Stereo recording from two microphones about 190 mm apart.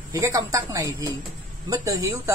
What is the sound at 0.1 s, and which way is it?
A woman's voice, 15° right (ahead or behind).